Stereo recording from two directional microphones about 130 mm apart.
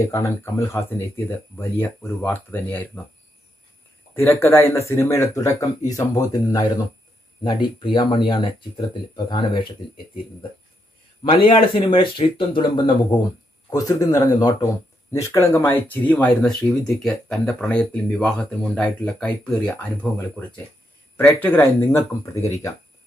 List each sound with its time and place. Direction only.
0.0 s speech: 25° left (ahead or behind)
4.1 s speech: 20° left (ahead or behind); by 9.8 s 40° left (ahead or behind)
11.2 s speech: 40° left (ahead or behind)
13.7 s speech: 25° left (ahead or behind)
16.3 s speech: centre (ahead or behind)
21.2 s speech: 15° left (ahead or behind)